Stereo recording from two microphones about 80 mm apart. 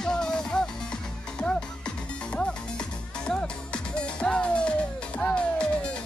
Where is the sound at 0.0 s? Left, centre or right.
Centre.